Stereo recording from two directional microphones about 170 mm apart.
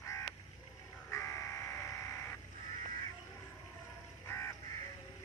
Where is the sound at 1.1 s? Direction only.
15° left (ahead or behind).